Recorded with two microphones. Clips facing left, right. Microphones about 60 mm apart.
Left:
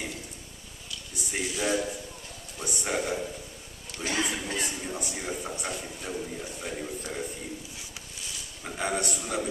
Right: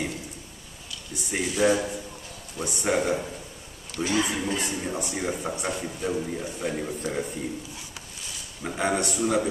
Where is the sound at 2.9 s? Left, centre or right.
Right.